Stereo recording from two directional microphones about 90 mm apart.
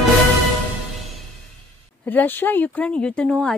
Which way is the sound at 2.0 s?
20° left (ahead or behind).